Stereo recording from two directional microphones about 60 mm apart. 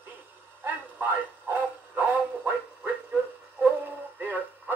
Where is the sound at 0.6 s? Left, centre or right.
Right.